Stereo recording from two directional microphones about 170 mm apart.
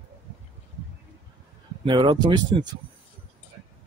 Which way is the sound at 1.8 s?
30° right (ahead or behind).